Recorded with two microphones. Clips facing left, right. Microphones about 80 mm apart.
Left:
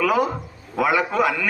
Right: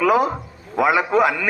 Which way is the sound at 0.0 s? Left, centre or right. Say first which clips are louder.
Right 3 dB; right.